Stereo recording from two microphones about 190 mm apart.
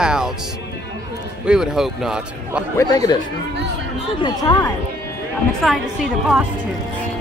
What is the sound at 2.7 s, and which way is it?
Speech, 20° left (ahead or behind).